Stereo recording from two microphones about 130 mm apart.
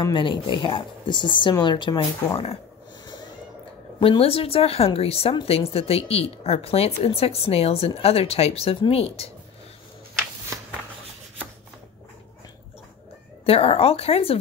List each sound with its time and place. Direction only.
0.0 s speech: 40° left (ahead or behind)
4.0 s speech: 45° left (ahead or behind)
13.5 s speech: 50° left (ahead or behind)